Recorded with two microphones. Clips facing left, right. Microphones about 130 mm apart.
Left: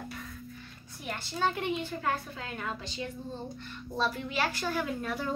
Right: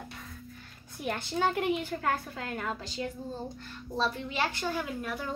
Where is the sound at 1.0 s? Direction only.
60° right (ahead or behind).